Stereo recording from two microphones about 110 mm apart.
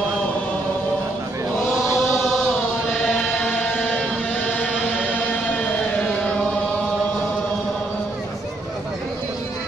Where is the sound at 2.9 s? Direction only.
5° left (ahead or behind).